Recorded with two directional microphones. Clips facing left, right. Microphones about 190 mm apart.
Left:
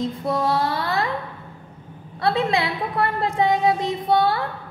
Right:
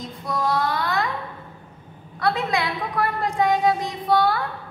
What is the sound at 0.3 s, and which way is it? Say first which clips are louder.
Mantra: even; 30° left (ahead or behind).